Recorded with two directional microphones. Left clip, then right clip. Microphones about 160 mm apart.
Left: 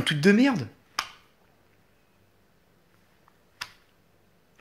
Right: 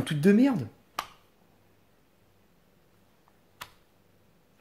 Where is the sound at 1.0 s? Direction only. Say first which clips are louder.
Left 4 dB; 40° right (ahead or behind).